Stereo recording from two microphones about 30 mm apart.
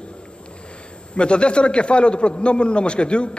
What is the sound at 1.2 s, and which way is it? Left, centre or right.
A man's voice, left.